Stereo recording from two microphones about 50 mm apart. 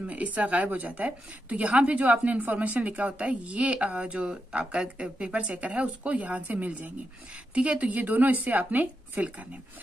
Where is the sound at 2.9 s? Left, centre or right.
Right.